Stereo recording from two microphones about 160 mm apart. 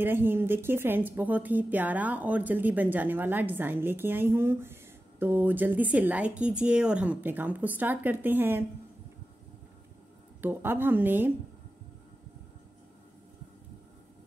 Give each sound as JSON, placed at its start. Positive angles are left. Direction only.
{"t": 0.0, "sound": "a woman's voice", "side_deg": -15}
{"t": 10.4, "sound": "a woman's voice", "side_deg": -15}